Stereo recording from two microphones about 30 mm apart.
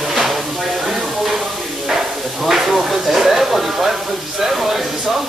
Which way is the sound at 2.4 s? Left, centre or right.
Centre.